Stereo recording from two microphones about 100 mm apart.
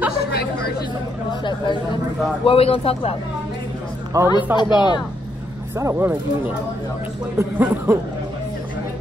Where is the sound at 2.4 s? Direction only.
70° left (ahead or behind).